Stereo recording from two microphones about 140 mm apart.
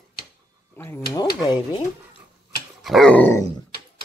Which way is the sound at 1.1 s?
30° left (ahead or behind).